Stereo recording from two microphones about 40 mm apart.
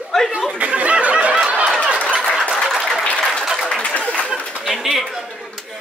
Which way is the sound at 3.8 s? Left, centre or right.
Left.